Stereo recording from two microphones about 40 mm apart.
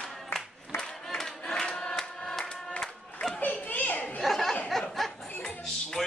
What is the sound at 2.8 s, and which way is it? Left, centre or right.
Music, centre.